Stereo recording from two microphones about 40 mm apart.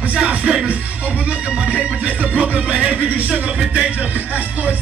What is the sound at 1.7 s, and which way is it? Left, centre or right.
Music, right.